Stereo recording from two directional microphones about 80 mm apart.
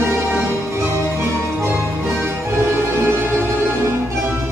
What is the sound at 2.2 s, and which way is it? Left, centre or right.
Music, right.